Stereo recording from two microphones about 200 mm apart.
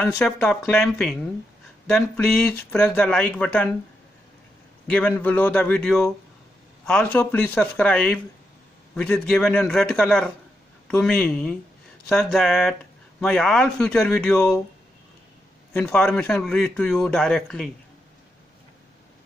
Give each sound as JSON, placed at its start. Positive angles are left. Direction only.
{"t": 0.0, "sound": "a man's voice", "side_deg": 5}
{"t": 4.8, "sound": "a man's voice", "side_deg": 5}
{"t": 14.3, "sound": "speech", "side_deg": 15}
{"t": 15.7, "sound": "a man's voice", "side_deg": 5}